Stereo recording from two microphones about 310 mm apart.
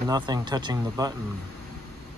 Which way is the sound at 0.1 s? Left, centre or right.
Centre.